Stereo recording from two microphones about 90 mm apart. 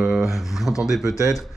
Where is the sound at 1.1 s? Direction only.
35° left (ahead or behind).